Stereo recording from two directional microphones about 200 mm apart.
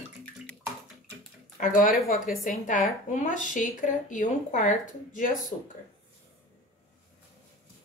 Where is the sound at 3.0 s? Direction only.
40° left (ahead or behind).